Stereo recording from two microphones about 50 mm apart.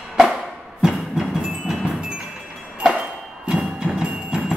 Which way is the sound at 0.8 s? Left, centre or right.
Centre.